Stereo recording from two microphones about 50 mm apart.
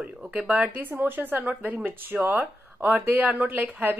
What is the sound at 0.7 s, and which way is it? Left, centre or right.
A woman's voice, right.